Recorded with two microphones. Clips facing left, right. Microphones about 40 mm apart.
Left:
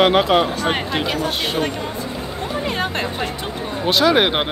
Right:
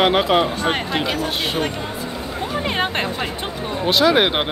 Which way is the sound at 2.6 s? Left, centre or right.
Right.